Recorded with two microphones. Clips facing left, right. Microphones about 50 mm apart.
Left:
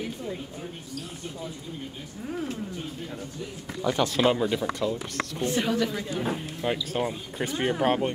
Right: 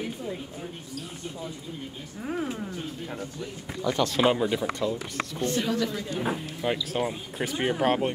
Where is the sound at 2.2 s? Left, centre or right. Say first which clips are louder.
Right 2 dB; centre.